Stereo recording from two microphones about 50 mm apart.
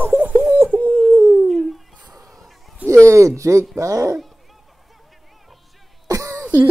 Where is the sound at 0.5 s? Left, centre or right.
Right.